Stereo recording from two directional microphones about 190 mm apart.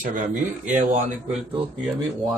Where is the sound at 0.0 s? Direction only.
45° right (ahead or behind).